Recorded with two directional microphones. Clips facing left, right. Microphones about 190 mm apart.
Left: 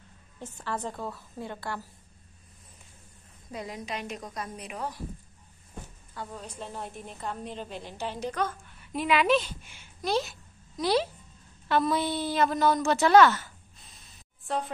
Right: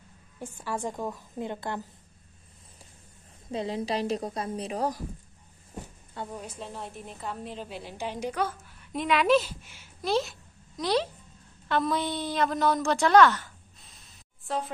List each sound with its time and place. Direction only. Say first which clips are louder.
0.4 s a woman's voice: right 1 dB; 10° right (ahead or behind)
3.5 s a woman's voice: right 7 dB; 30° right (ahead or behind)
6.4 s a woman's voice: even; 5° right (ahead or behind)
8.9 s a woman's voice: right 1 dB; 5° left (ahead or behind)